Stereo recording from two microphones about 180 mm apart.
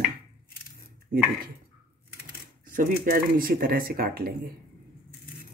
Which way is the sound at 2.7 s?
55° right (ahead or behind).